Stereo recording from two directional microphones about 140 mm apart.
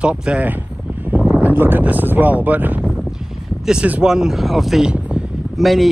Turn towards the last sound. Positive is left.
turn(degrees=0)  # may be behind; listen again after turning